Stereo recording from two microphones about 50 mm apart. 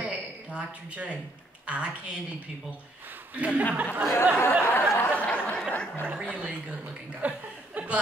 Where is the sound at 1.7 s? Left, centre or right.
Right.